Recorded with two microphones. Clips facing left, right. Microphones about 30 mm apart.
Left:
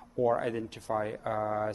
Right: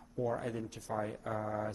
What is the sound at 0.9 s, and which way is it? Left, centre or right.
Speech, left.